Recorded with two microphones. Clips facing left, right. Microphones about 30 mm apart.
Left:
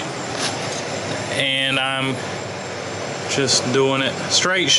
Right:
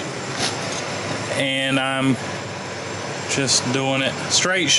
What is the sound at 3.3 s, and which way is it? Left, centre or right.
Speech, centre.